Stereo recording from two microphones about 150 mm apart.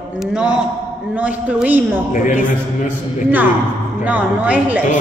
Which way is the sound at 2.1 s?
60° left (ahead or behind).